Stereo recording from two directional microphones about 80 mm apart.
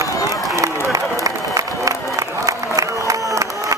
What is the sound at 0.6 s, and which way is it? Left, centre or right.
Run, right.